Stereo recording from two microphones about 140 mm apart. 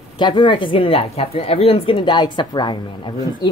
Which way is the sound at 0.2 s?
35° left (ahead or behind).